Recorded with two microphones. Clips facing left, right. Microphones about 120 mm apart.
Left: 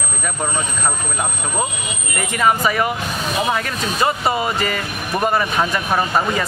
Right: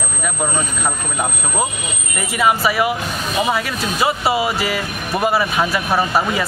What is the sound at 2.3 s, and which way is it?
Speech, 5° right (ahead or behind).